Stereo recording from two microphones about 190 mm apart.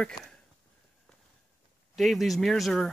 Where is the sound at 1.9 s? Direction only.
Centre (ahead or behind).